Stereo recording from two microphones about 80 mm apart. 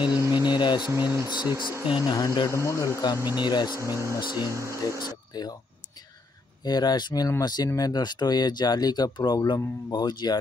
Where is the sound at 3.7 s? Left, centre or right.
Right.